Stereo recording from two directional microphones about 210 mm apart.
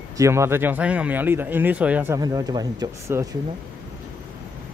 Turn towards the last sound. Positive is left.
turn(degrees=-15)  # may be behind; listen again after turning